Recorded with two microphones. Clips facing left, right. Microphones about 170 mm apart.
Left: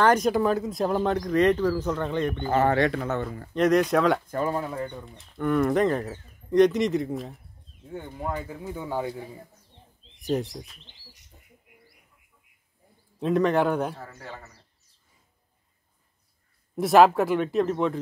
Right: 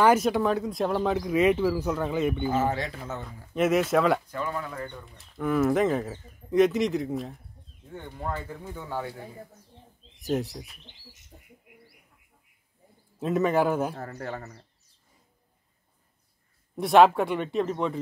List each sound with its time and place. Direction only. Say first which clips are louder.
0.0 s speech: even; 5° right (ahead or behind)
2.5 s speech: left 5 dB; 65° left (ahead or behind)
3.5 s speech: left 2 dB; 5° right (ahead or behind)
4.3 s speech: left 5 dB; 40° left (ahead or behind)
5.0 s speech: right 1 dB; centre (ahead or behind); by 9.1 s 15° left (ahead or behind)
10.1 s speech: left 1 dB; centre (ahead or behind)
13.2 s speech: left 1 dB; 5° right (ahead or behind)
13.9 s speech: right 6 dB; 50° right (ahead or behind)
16.7 s speech: left 1 dB; centre (ahead or behind)